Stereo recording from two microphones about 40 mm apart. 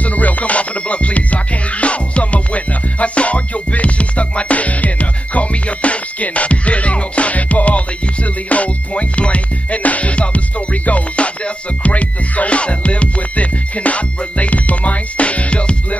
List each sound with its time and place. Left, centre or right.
0.0 s music: left